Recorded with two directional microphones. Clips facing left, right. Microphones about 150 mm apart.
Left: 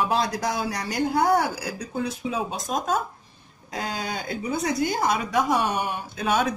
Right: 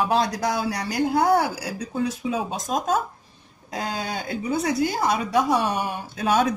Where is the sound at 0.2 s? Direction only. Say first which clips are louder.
Right 2 dB; 35° right (ahead or behind).